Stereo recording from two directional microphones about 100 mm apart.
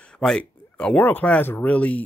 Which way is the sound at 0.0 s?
10° left (ahead or behind).